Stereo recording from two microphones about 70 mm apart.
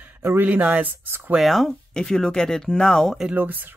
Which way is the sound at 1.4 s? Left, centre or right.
Centre.